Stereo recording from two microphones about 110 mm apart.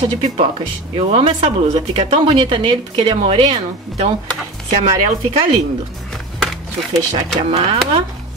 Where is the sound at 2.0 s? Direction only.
45° right (ahead or behind); by 3.5 s 65° right (ahead or behind).